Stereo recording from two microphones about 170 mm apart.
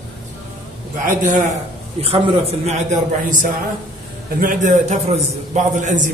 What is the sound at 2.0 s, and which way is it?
A man's voice, 35° right (ahead or behind).